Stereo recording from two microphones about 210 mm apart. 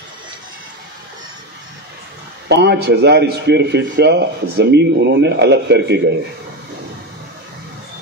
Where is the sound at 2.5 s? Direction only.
55° right (ahead or behind).